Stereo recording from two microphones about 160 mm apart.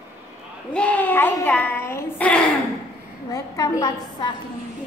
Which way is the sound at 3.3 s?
20° left (ahead or behind).